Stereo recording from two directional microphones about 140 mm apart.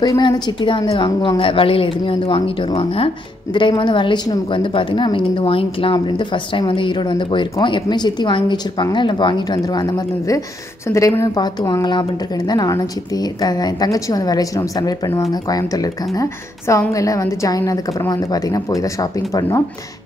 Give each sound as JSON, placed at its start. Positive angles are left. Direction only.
{"t": 0.0, "sound": "a woman's voice", "side_deg": 25}